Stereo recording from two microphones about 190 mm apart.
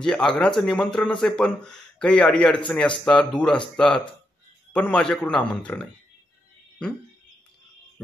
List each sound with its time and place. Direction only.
0.0 s speech: 5° left (ahead or behind)